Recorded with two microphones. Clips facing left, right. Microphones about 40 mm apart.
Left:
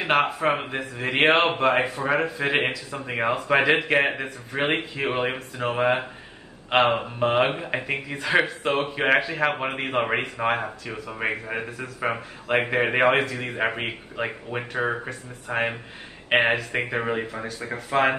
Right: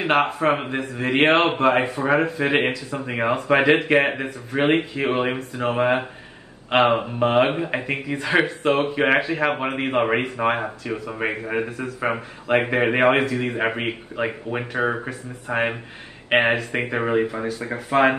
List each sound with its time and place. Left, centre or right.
0.0 s speech: centre